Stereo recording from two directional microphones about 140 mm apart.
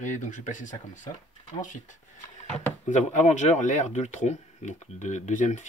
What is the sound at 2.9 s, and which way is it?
Speech, 60° left (ahead or behind).